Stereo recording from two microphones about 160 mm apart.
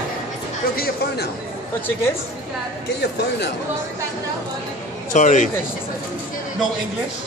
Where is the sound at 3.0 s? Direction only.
90° left.